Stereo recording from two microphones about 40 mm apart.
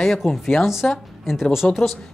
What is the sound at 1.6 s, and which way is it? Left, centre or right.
Speech, left.